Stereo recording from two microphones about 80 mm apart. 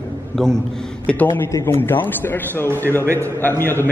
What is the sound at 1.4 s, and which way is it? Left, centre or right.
A man's voice, left.